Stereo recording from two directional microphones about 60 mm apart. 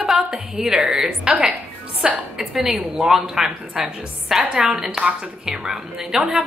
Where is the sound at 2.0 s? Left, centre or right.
Right.